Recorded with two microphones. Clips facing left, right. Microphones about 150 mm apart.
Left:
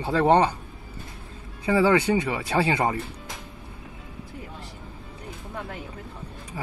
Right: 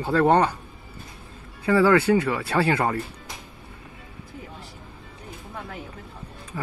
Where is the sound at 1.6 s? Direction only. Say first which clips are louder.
Right 2 dB; 15° left (ahead or behind).